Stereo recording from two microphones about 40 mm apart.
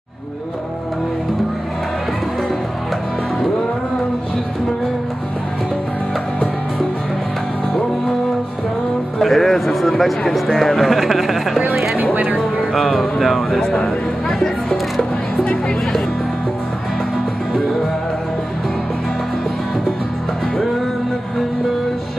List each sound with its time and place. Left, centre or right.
9.2 s a sound: centre
10.5 s speech: centre
11.9 s music: right
12.4 s speech: centre
14.4 s music: centre